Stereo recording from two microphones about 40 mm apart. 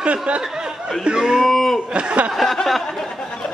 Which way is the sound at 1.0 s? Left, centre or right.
Centre.